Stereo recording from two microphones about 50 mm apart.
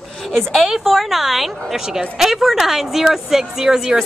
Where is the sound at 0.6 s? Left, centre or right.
Centre.